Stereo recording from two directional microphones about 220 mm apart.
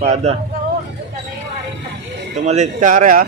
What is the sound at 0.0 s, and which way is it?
Speech, 30° right (ahead or behind).